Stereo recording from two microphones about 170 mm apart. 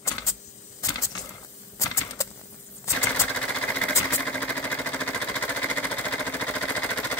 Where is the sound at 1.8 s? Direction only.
15° left (ahead or behind).